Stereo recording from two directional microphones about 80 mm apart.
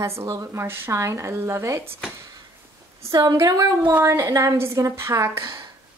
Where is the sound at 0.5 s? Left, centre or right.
Right.